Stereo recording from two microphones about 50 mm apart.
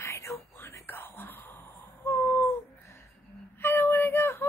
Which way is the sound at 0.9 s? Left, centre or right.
Left.